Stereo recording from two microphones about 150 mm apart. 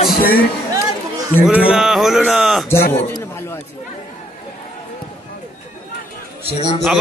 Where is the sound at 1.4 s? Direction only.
5° right (ahead or behind).